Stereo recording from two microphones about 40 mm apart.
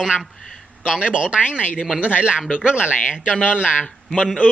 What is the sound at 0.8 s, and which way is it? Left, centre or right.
A man's voice, right.